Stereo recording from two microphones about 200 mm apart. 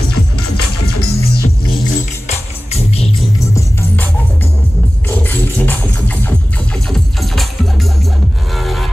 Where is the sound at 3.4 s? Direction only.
15° left (ahead or behind).